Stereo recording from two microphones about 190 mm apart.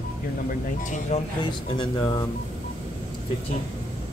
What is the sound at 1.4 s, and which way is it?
Speech, 25° left (ahead or behind).